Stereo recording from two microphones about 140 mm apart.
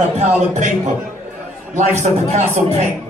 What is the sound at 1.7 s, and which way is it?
Speech, 60° right (ahead or behind).